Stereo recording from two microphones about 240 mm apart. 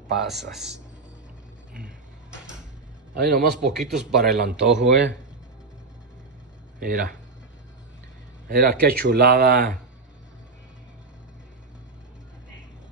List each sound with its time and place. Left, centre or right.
0.3 s a man's voice: centre
3.2 s speech: right
3.7 s a man's voice: centre
4.4 s speech: right
6.8 s speech: right
8.5 s speech: right